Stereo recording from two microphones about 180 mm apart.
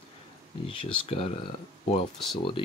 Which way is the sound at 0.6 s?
30° left (ahead or behind).